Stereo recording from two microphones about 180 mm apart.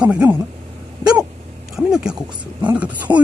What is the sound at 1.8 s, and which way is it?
Speech, 5° right (ahead or behind).